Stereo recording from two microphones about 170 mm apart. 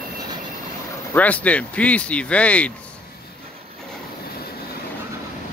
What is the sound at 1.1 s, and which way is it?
Speech, 10° left (ahead or behind).